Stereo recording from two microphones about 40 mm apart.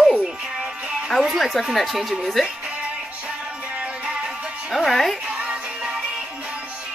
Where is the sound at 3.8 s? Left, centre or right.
Right.